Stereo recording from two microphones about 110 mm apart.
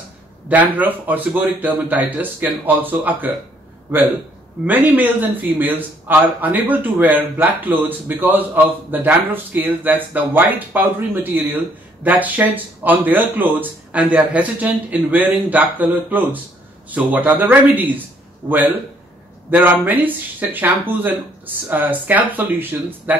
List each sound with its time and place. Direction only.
0.5 s a man's voice: 15° right (ahead or behind)
4.6 s a man's voice: 15° right (ahead or behind)